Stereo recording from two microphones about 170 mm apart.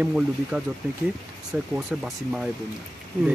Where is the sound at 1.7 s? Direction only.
Centre (ahead or behind).